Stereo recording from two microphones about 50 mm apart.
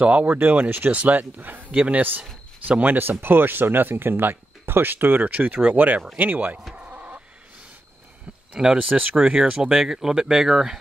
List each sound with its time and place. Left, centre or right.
0.0 s a man's voice: right
6.7 s chicken: right
8.7 s a man's voice: right
9.1 s speech: centre